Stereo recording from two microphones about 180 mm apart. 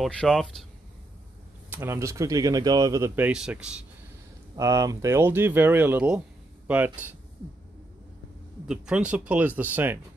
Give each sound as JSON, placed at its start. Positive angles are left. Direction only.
{"t": 0.0, "sound": "speech", "side_deg": 5}
{"t": 1.7, "sound": "speech", "side_deg": -15}
{"t": 4.6, "sound": "speech", "side_deg": -20}
{"t": 8.6, "sound": "speech", "side_deg": -5}